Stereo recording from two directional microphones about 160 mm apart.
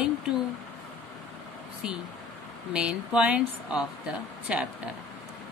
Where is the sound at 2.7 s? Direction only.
5° right (ahead or behind).